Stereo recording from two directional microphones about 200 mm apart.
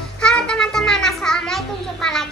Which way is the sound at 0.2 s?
5° left (ahead or behind).